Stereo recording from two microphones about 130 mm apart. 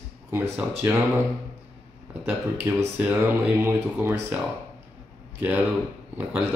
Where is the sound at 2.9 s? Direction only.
15° right (ahead or behind).